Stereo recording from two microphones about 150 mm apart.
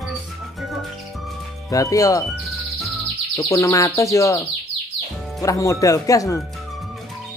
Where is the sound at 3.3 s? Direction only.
20° left (ahead or behind).